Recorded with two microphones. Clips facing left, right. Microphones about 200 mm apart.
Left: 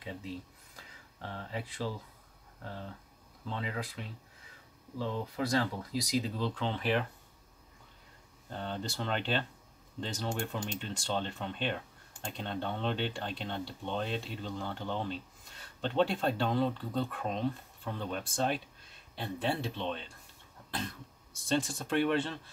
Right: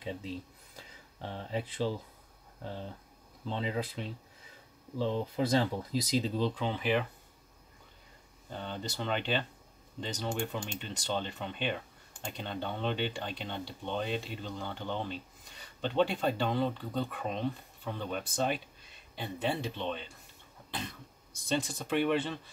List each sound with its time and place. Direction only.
0.7 s speech: 20° right (ahead or behind)
3.4 s speech: 25° right (ahead or behind); by 7.1 s centre (ahead or behind)
8.5 s speech: centre (ahead or behind)
21.5 s speech: centre (ahead or behind)